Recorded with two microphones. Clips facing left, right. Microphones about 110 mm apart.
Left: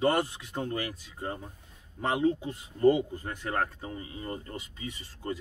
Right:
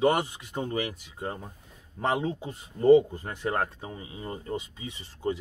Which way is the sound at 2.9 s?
20° right (ahead or behind).